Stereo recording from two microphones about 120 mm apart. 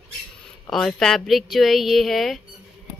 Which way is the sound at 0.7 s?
Centre (ahead or behind).